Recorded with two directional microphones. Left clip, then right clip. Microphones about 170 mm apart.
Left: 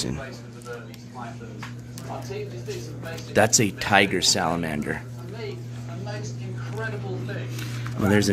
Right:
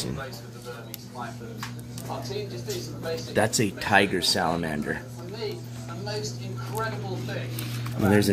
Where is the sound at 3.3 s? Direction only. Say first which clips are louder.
Left 5 dB; 25° left (ahead or behind).